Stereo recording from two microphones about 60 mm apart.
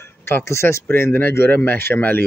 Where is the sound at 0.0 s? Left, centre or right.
Left.